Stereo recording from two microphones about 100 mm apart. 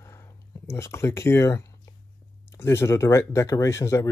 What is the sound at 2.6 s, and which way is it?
Speech, 25° left (ahead or behind).